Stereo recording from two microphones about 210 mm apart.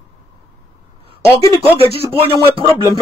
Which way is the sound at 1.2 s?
15° left (ahead or behind).